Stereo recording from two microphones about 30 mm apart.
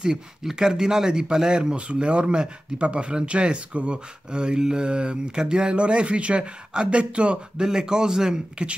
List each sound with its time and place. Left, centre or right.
0.5 s speech: right
1.8 s speech: right
7.6 s speech: right
8.6 s speech: right